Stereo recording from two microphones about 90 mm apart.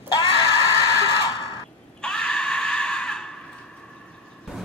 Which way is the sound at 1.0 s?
50° left (ahead or behind).